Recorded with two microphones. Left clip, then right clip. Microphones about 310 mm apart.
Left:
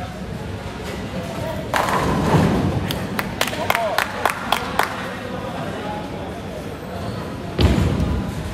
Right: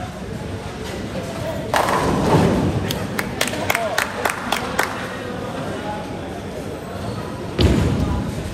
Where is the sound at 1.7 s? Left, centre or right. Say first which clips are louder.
Right 1 dB; centre.